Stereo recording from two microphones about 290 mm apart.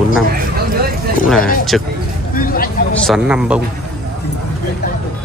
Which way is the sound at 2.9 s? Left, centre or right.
Centre.